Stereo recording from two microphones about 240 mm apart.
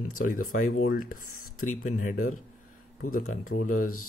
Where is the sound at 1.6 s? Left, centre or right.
Left.